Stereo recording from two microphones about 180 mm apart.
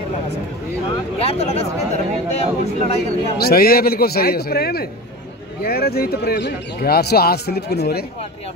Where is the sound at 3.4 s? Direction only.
60° left (ahead or behind).